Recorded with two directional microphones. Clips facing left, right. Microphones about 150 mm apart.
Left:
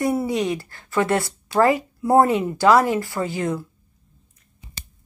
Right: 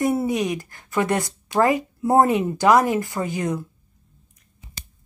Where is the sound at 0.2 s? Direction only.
20° right (ahead or behind).